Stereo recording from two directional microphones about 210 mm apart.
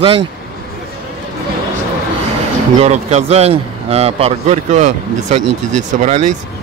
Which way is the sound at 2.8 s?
30° right (ahead or behind).